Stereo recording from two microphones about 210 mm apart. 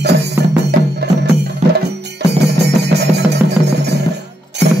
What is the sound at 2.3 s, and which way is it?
Music, 50° right (ahead or behind).